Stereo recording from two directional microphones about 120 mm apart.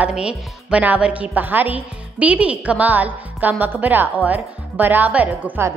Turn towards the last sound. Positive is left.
turn(degrees=-20)  # may be behind; listen again after turning